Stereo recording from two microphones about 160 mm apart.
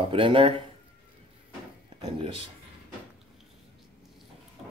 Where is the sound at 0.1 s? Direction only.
35° right (ahead or behind).